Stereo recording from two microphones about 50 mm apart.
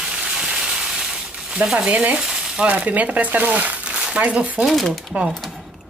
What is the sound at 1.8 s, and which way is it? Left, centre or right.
Speech, right.